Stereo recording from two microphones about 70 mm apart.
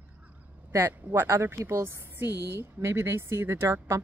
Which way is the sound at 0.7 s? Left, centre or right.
Right.